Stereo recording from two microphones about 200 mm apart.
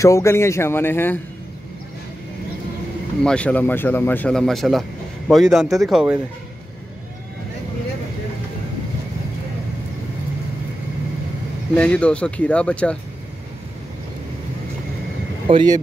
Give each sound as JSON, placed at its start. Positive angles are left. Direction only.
{"t": 0.0, "sound": "a man's voice", "side_deg": 15}
{"t": 3.3, "sound": "a man's voice", "side_deg": 5}
{"t": 11.7, "sound": "speech", "side_deg": 5}
{"t": 15.4, "sound": "speech", "side_deg": -25}